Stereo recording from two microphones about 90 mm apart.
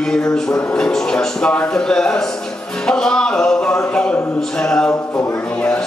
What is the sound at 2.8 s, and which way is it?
Music, 10° left (ahead or behind).